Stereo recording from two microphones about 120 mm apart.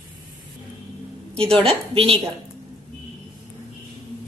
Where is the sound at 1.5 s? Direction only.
55° right (ahead or behind).